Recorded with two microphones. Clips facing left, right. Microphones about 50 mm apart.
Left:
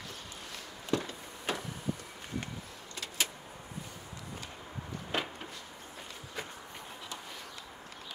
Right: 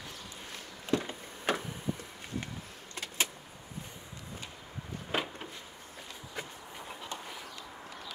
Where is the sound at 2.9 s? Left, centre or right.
Right.